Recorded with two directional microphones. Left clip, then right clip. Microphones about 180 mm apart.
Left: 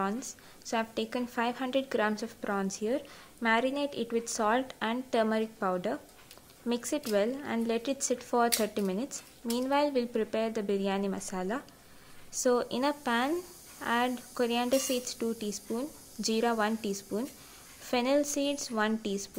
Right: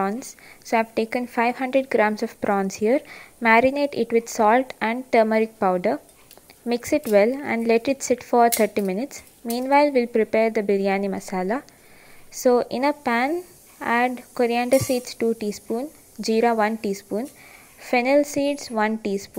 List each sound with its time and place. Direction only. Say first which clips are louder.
0.0 s a woman's voice: right 8 dB; 30° right (ahead or behind)